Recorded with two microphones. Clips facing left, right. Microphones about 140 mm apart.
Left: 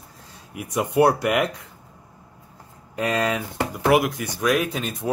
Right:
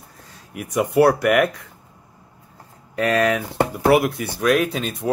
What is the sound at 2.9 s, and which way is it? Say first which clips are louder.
Speech: right 4 dB; 20° left (ahead or behind).